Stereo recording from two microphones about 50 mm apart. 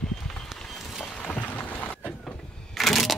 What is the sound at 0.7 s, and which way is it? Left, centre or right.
Music, centre.